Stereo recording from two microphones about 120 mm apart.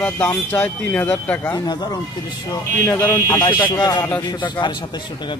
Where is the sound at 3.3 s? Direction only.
40° left (ahead or behind).